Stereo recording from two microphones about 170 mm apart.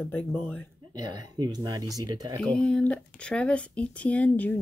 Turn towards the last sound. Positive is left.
turn(degrees=10)  # may be behind; listen again after turning